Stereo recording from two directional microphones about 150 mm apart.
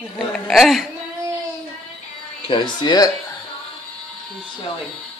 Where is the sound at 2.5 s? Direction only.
30° left (ahead or behind).